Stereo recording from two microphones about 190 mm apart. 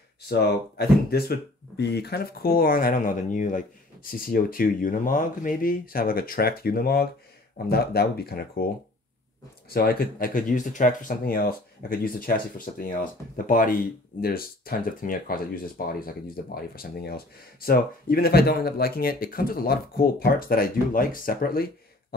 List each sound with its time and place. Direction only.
0.3 s speech: 55° left (ahead or behind)
9.7 s speech: 50° left (ahead or behind)